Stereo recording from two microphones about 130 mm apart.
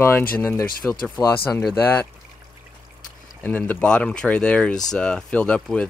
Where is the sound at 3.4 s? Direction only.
10° left (ahead or behind).